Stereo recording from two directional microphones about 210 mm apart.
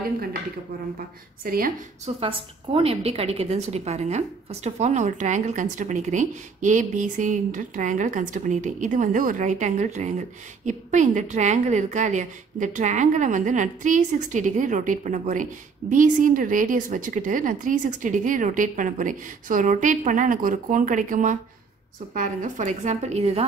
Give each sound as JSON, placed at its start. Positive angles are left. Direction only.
{"t": 0.9, "sound": "a woman's voice", "side_deg": -45}
{"t": 2.0, "sound": "a woman's voice", "side_deg": -25}